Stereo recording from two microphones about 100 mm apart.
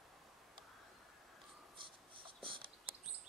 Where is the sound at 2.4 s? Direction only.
60° right (ahead or behind).